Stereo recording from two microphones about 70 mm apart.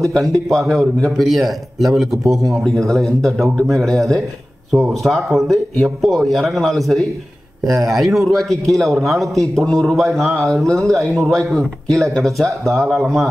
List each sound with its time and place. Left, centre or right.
0.0 s a man's voice: centre